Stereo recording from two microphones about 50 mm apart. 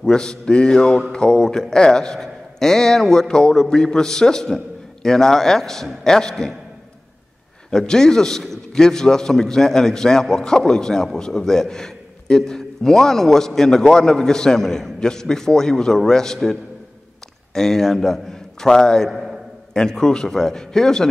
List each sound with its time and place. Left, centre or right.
0.1 s a man's voice: centre
7.7 s a man's voice: centre
17.6 s a man's voice: centre
19.0 s a sound: centre
19.7 s a man's voice: centre